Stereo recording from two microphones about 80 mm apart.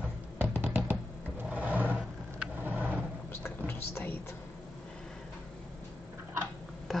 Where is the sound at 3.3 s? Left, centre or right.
Left.